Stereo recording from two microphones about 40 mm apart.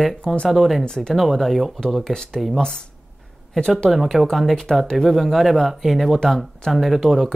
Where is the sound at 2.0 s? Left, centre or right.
Centre.